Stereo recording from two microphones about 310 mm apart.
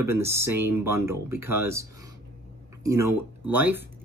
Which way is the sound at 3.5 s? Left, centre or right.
Centre.